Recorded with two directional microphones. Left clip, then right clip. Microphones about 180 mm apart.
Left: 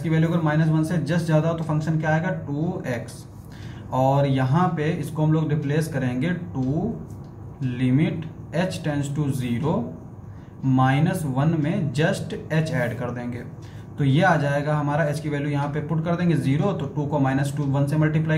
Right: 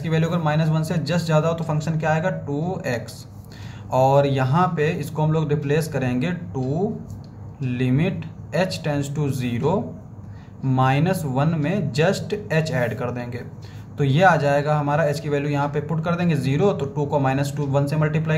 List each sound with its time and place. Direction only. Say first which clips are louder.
0.1 s a man's voice: right 1 dB; 45° right (ahead or behind)
3.9 s a man's voice: right 4 dB; 40° right (ahead or behind)
7.7 s a man's voice: even; 40° right (ahead or behind)